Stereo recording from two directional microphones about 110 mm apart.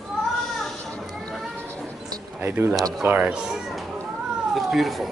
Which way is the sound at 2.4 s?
20° right (ahead or behind).